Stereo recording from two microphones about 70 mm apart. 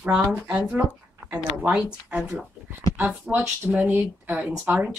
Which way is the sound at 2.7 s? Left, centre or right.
Right.